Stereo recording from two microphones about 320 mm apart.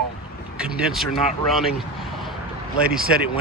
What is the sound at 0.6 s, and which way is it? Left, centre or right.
Speech, centre.